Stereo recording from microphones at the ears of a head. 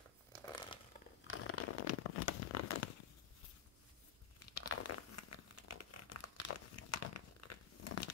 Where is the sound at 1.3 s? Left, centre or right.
Left.